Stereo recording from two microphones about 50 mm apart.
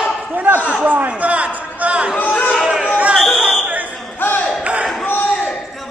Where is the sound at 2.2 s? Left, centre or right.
Left.